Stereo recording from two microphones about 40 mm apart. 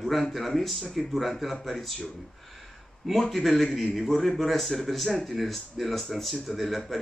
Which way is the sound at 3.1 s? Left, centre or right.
Centre.